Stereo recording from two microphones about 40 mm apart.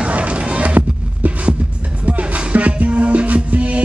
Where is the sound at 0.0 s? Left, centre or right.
Right.